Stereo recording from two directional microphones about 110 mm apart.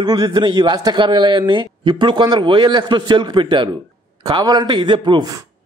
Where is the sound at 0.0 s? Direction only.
40° right (ahead or behind).